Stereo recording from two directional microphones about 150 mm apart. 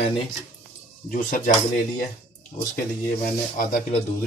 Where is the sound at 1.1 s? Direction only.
65° left (ahead or behind).